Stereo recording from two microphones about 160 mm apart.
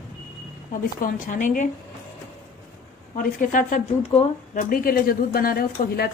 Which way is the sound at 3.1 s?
55° left (ahead or behind).